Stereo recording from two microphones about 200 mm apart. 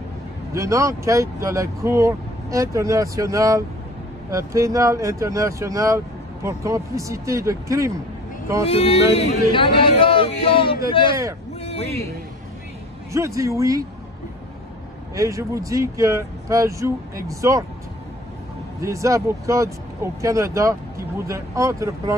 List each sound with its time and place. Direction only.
0.5 s speech: 15° right (ahead or behind)
8.6 s speech: 30° left (ahead or behind)
13.1 s speech: 15° right (ahead or behind)
15.1 s speech: 15° right (ahead or behind)
18.8 s speech: 15° right (ahead or behind)